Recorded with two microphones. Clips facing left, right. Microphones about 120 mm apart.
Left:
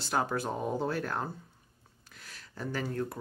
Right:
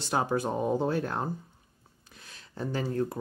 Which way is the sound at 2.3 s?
25° right (ahead or behind).